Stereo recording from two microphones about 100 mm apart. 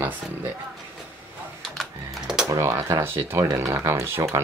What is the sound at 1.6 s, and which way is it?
Typing, 5° right (ahead or behind).